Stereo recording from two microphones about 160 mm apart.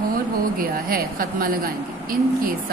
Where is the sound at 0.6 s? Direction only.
65° right (ahead or behind).